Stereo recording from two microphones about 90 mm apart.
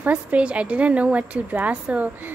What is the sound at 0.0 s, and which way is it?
A woman's voice, 15° right (ahead or behind).